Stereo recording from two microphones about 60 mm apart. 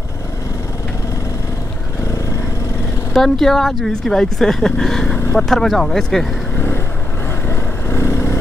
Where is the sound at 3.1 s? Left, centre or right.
Centre.